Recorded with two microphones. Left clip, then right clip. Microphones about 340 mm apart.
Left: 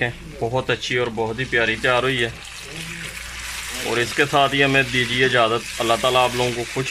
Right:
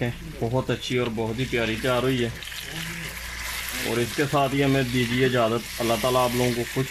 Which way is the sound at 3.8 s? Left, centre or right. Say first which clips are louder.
Left 6 dB; left.